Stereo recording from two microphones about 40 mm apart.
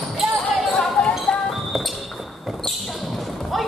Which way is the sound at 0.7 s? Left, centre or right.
Centre.